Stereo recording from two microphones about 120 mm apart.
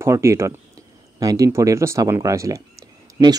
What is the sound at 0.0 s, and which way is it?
Speech, 25° right (ahead or behind).